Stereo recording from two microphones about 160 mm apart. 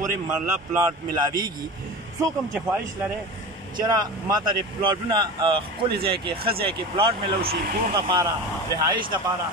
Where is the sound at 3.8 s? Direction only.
25° right (ahead or behind).